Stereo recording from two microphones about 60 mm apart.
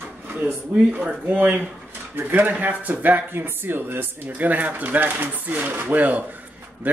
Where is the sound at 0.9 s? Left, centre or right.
Right.